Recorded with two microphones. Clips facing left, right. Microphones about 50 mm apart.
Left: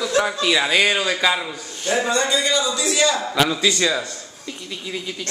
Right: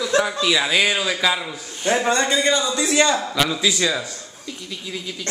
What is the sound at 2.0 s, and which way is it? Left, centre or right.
A man's voice, right.